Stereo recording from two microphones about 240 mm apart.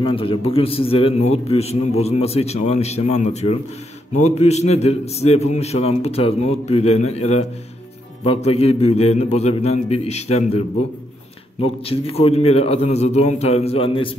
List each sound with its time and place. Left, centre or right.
0.0 s a man's voice: left
11.6 s a man's voice: left